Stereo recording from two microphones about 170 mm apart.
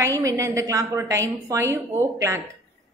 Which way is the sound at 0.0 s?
20° right (ahead or behind).